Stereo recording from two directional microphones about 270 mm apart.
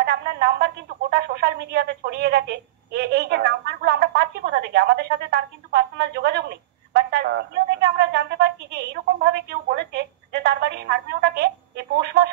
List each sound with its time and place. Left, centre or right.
0.0 s a woman's voice: right